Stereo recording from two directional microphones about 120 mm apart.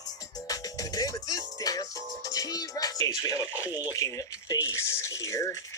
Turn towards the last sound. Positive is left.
turn(degrees=25)  # may be behind; listen again after turning